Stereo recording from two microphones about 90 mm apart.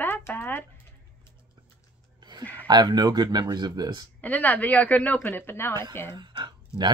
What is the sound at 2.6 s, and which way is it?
Speech, 50° right (ahead or behind).